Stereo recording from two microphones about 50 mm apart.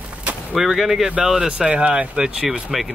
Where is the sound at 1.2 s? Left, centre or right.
Centre.